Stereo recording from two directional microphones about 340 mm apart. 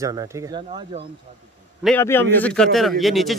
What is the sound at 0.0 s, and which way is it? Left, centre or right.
Speech, centre.